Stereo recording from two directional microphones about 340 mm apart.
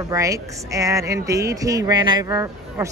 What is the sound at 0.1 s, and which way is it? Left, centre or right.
A woman's voice, centre.